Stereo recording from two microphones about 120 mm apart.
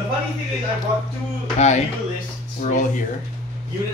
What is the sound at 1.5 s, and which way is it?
Speech, 75° left (ahead or behind).